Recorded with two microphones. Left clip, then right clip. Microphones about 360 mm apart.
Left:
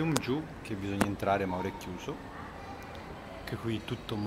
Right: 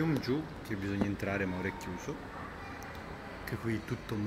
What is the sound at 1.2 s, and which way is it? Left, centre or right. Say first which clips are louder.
Speech: left 5 dB; left.